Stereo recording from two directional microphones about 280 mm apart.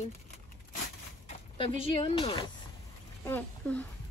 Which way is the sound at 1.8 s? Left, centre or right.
Centre.